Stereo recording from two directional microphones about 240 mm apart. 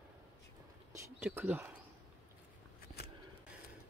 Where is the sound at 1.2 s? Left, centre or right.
Centre.